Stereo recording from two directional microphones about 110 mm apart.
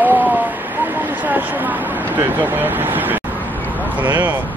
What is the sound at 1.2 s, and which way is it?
Speech, 15° right (ahead or behind).